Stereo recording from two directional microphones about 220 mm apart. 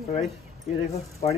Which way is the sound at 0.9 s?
30° left (ahead or behind).